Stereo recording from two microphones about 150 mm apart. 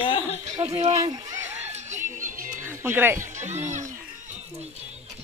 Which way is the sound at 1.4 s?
50° right (ahead or behind).